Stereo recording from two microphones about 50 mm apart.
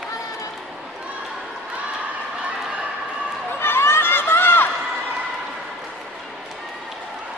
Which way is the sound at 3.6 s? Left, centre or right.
Left.